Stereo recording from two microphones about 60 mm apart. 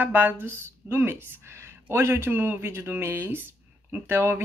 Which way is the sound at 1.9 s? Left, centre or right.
Right.